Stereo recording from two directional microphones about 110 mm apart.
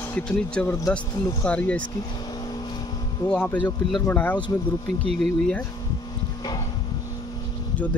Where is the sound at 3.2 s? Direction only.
15° left (ahead or behind).